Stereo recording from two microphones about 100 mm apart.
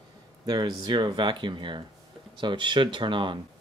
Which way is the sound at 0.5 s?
45° right (ahead or behind).